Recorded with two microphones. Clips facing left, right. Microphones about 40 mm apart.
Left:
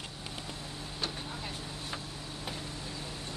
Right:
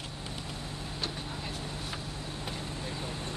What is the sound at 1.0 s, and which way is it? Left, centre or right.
Vehicle, centre.